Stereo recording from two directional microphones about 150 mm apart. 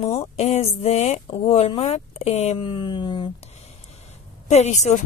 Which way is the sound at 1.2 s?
35° left (ahead or behind).